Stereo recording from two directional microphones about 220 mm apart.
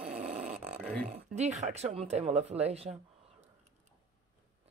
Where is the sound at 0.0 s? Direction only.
30° right (ahead or behind).